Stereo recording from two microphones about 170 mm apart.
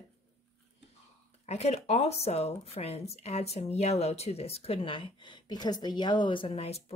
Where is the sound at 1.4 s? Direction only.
40° left (ahead or behind).